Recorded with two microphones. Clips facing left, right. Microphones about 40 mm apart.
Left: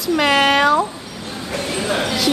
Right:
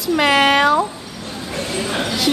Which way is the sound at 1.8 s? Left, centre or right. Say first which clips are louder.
Left 4 dB; centre.